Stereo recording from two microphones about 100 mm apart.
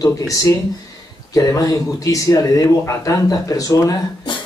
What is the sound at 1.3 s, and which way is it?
A man's voice, 35° left (ahead or behind).